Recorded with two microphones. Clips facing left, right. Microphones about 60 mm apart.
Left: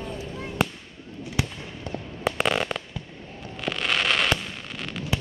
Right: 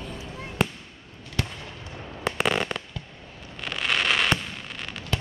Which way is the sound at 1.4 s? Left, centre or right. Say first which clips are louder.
Left 2 dB; centre.